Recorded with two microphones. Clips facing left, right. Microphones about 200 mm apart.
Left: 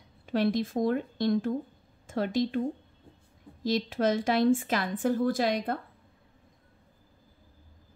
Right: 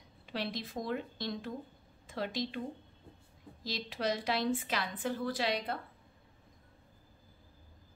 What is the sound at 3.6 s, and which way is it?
A woman's voice, 50° left (ahead or behind).